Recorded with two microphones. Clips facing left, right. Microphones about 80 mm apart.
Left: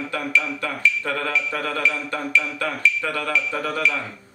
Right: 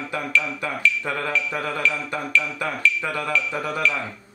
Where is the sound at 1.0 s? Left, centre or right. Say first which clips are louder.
Left 1 dB; centre.